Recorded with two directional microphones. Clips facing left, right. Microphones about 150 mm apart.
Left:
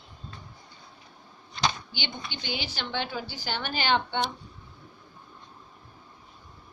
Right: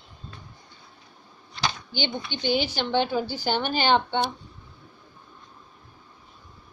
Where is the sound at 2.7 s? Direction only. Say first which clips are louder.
Right 8 dB; 25° right (ahead or behind).